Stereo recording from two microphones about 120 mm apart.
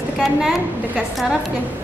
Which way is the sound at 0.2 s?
Centre (ahead or behind).